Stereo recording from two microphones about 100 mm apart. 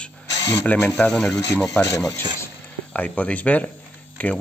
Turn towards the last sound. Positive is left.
turn(degrees=15)  # may be behind; listen again after turning